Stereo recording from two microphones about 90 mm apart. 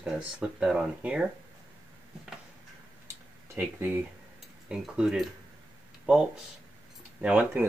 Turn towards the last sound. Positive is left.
turn(degrees=-20)  # may be behind; listen again after turning